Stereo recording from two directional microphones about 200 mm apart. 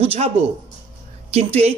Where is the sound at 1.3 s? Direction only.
30° right (ahead or behind).